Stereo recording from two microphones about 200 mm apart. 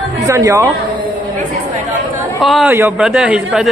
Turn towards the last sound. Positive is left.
turn(degrees=-5)  # may be behind; listen again after turning